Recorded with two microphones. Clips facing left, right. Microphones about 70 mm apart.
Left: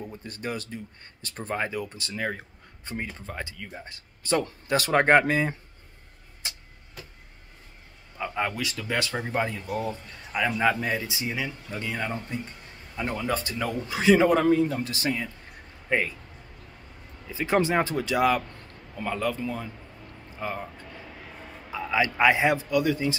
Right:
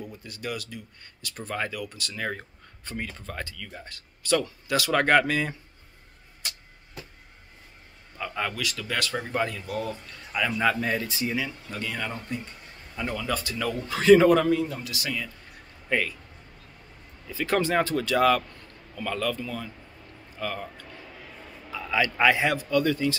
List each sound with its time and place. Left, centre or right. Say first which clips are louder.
0.0 s speech: left 1 dB; left
2.1 s speech: left 1 dB; centre
2.8 s speech: left 1 dB; left
6.4 s a sound: even; left
8.2 s speech: left 2 dB; centre
11.7 s speech: left 2 dB; left
17.3 s a man's voice: left 1 dB; centre
21.6 s a sound: left 1 dB; left
22.2 s speech: left 2 dB; left